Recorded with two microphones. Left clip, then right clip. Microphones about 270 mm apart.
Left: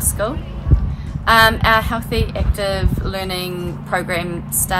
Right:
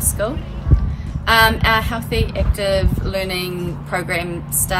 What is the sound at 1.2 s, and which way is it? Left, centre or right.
A woman's voice, centre.